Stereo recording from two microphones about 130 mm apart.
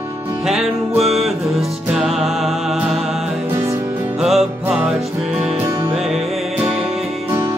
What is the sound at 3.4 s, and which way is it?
Music, 20° right (ahead or behind).